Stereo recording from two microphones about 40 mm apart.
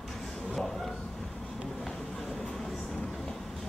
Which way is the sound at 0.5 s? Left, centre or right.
Centre.